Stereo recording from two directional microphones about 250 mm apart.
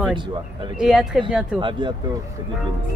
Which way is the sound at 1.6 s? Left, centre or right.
Centre.